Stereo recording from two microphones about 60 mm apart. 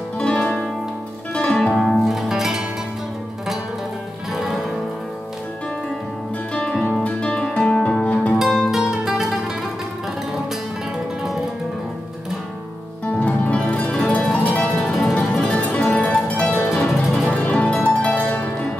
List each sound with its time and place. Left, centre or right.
0.2 s music: centre
1.7 s music: centre
4.3 s music: centre
6.5 s music: centre
8.4 s music: centre
13.5 s music: left
13.9 s music: centre
15.4 s music: centre
16.7 s music: centre
17.3 s music: centre